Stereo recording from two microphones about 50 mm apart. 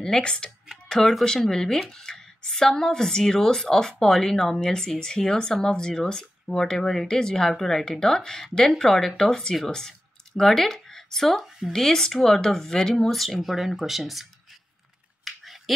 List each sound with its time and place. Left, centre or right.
0.0 s speech: centre
15.2 s finger snapping: centre